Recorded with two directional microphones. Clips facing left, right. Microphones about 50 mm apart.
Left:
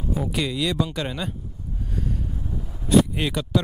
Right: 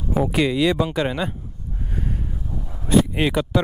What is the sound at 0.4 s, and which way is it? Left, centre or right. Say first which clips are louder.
Speech: right 6 dB; right.